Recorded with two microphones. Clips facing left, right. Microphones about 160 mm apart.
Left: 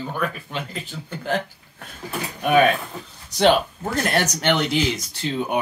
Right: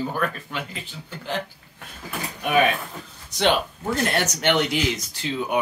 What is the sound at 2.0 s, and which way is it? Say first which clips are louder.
Speech: left 4 dB; 35° left (ahead or behind).